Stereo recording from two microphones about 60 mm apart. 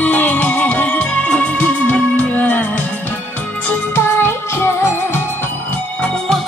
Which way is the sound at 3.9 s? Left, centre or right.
Left.